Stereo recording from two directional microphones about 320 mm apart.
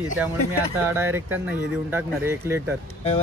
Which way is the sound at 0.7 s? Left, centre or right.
Centre.